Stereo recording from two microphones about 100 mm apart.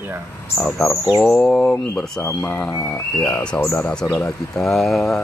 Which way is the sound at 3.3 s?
15° left (ahead or behind).